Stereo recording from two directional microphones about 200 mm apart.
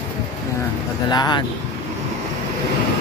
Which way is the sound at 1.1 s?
20° left (ahead or behind).